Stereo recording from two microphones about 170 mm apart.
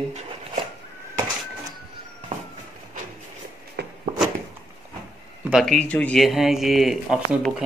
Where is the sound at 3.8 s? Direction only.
80° right.